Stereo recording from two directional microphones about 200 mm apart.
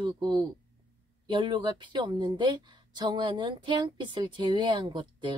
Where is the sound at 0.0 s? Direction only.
20° right (ahead or behind).